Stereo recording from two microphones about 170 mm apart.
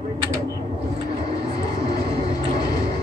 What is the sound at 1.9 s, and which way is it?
Train, 25° left (ahead or behind).